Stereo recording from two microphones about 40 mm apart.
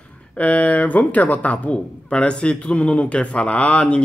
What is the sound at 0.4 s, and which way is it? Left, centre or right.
Speech, left.